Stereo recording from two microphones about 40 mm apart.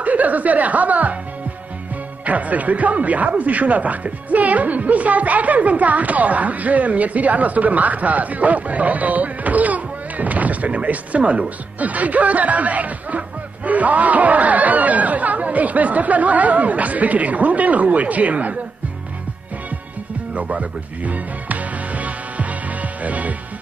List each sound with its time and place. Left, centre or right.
0.0 s speech: right
2.2 s speech: right
20.3 s music: right